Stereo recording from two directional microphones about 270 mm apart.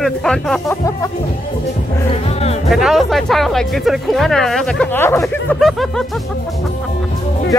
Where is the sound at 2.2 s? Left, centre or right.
Left.